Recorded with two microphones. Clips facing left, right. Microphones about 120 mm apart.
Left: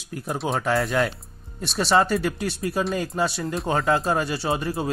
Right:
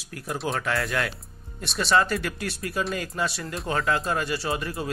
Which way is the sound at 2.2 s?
25° left (ahead or behind).